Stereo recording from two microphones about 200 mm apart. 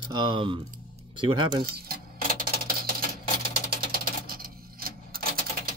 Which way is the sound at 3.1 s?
35° left (ahead or behind).